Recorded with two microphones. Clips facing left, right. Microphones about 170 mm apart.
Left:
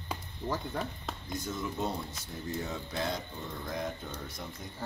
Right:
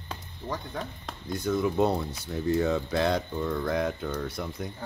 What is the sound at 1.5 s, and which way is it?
Speech, 65° right (ahead or behind).